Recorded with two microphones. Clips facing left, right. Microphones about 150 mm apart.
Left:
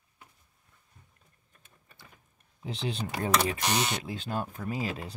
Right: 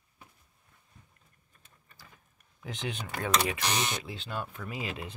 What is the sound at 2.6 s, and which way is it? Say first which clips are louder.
Speech: left 3 dB; 35° left (ahead or behind).